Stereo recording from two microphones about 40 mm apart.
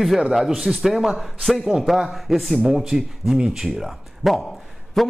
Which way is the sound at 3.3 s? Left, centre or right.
Centre.